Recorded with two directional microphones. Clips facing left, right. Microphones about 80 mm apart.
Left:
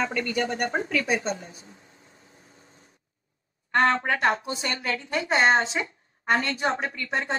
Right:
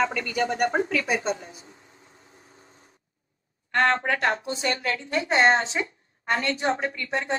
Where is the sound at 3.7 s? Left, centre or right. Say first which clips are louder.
Even; centre.